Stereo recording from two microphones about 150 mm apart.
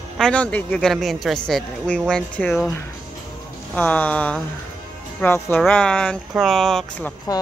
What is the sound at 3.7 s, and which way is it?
A woman's voice, 10° left (ahead or behind).